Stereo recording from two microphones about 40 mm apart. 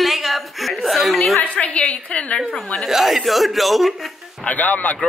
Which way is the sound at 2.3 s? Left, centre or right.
Centre.